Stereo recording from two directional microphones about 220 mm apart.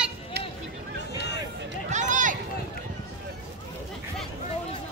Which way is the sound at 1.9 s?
35° right (ahead or behind).